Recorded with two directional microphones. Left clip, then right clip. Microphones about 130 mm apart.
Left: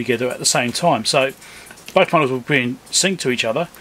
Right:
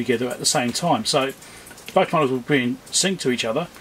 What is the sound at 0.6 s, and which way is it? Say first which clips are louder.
Speech: left 4 dB; 30° left (ahead or behind).